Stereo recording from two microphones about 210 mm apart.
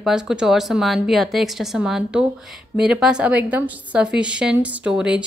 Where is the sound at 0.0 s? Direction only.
Centre (ahead or behind).